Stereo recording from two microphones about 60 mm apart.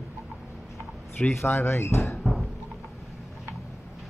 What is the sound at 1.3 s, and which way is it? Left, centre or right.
Speech, left.